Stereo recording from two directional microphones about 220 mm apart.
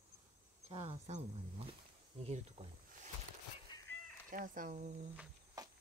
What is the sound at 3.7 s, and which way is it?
Cat, 20° left (ahead or behind).